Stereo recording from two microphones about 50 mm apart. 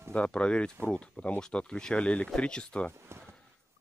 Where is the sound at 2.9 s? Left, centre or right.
Right.